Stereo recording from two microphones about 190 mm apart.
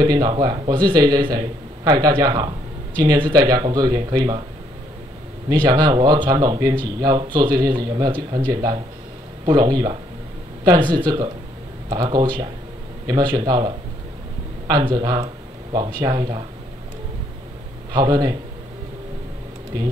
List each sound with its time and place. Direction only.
0.0 s speech: 20° right (ahead or behind)
5.5 s speech: 20° right (ahead or behind)
17.9 s speech: 20° right (ahead or behind)